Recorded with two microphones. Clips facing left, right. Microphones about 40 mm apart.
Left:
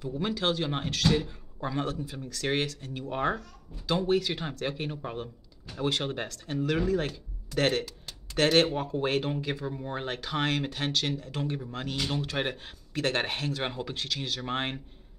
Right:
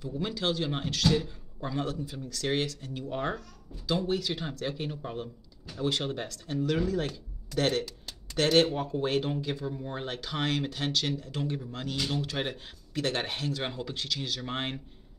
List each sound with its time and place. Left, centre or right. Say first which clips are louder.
0.0 s speech: left 2 dB; left